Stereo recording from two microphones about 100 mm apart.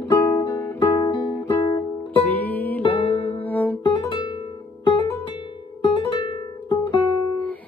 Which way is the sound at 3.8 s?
50° left (ahead or behind).